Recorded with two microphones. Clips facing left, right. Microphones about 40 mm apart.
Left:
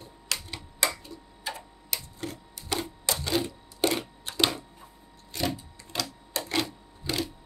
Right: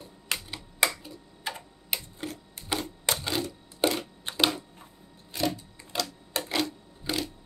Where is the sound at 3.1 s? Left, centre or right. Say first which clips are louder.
Right 2 dB; right.